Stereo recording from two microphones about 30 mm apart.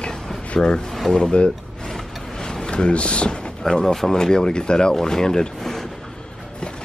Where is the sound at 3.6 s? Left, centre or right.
Centre.